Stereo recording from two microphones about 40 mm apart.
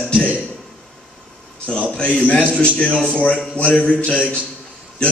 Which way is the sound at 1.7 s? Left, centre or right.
Left.